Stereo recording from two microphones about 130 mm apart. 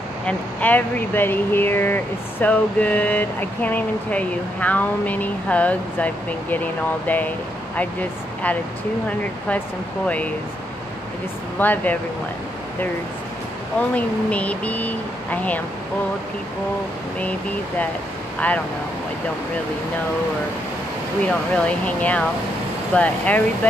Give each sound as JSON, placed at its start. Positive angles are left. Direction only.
{"t": 0.3, "sound": "speech", "side_deg": 10}
{"t": 10.0, "sound": "speech", "side_deg": 10}
{"t": 11.6, "sound": "speech", "side_deg": 15}
{"t": 13.7, "sound": "speech", "side_deg": 10}
{"t": 21.3, "sound": "speech", "side_deg": 10}